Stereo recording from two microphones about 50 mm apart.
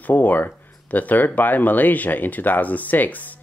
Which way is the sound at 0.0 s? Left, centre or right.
Left.